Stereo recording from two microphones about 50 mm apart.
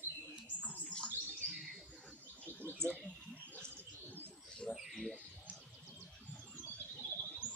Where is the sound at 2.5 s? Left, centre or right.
Right.